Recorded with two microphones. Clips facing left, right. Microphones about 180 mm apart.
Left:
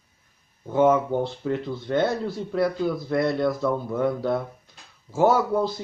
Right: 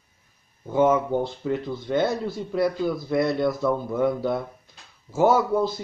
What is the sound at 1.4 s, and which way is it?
Speech, 5° right (ahead or behind).